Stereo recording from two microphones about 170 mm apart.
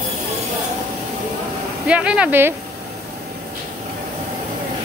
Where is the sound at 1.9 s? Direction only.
5° right (ahead or behind).